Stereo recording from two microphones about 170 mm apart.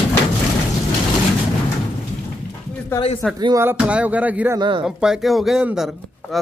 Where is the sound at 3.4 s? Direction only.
25° right (ahead or behind).